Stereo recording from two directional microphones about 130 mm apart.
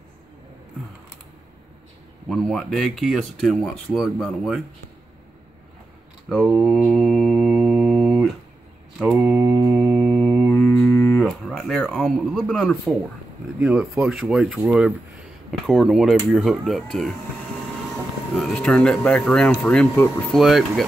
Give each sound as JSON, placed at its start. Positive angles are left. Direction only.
{"t": 2.2, "sound": "speech", "side_deg": 0}
{"t": 6.5, "sound": "mantra", "side_deg": 0}
{"t": 9.2, "sound": "speech", "side_deg": 0}
{"t": 9.7, "sound": "mantra", "side_deg": 0}
{"t": 10.5, "sound": "music", "side_deg": 10}
{"t": 11.2, "sound": "a sound", "side_deg": 0}
{"t": 13.6, "sound": "speech", "side_deg": -10}
{"t": 18.3, "sound": "speech", "side_deg": 0}